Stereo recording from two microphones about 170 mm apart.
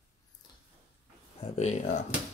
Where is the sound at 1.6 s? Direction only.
40° left (ahead or behind).